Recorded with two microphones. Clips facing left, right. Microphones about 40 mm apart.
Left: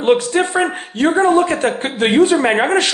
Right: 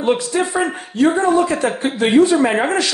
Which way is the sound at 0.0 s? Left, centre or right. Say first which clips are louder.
Left 3 dB; left.